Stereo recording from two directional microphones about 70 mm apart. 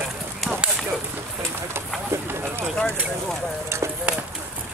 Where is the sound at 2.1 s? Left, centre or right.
Right.